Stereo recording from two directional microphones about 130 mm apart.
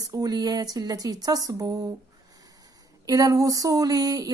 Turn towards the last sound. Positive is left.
turn(degrees=-30)  # may be behind; listen again after turning